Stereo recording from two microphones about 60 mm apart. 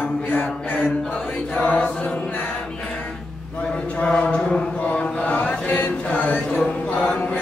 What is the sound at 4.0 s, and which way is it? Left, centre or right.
Chant, centre.